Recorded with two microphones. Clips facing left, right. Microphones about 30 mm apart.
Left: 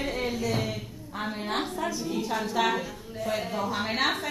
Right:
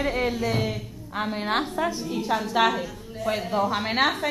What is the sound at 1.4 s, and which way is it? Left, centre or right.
Speech, right.